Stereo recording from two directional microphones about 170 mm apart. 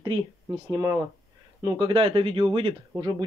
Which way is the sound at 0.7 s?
20° right (ahead or behind).